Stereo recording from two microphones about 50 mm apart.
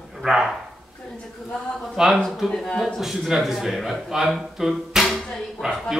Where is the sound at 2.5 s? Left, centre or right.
Centre.